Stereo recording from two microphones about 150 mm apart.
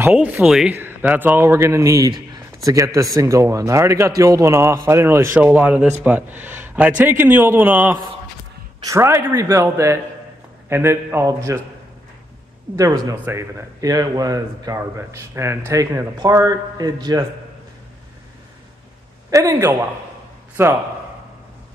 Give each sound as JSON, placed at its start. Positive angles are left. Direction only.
{"t": 0.0, "sound": "a man's voice", "side_deg": -10}
{"t": 12.7, "sound": "a man's voice", "side_deg": -25}
{"t": 19.3, "sound": "a man's voice", "side_deg": -20}